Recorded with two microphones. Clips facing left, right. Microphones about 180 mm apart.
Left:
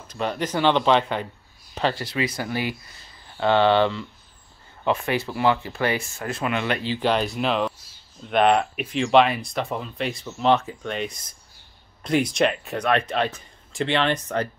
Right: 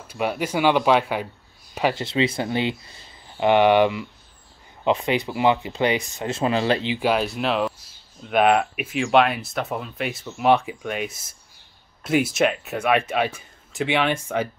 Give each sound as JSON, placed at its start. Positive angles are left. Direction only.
{"t": 0.1, "sound": "speech", "side_deg": -10}
{"t": 2.0, "sound": "speech", "side_deg": -25}
{"t": 6.9, "sound": "speech", "side_deg": -10}